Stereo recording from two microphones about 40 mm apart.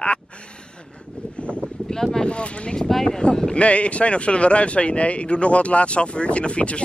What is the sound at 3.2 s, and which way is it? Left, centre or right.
Speech, left.